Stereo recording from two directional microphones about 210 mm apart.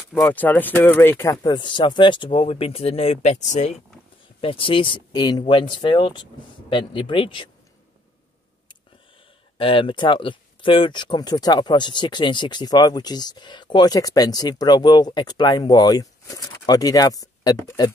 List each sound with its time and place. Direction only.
0.1 s speech: 10° left (ahead or behind); by 7.4 s 25° left (ahead or behind)
9.6 s speech: 25° left (ahead or behind)